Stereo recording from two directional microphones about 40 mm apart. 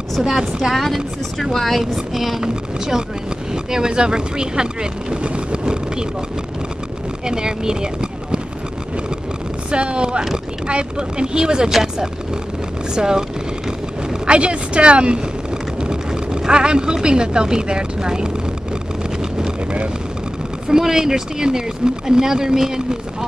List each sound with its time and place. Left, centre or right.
0.4 s speech: centre
0.7 s speech: centre
1.8 s speech: centre
3.7 s speech: right
7.2 s speech: centre
9.7 s speech: right
14.2 s speech: right
16.4 s speech: right
20.6 s speech: centre